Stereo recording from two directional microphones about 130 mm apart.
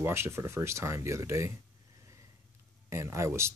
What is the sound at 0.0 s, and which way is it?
Speech, 20° right (ahead or behind).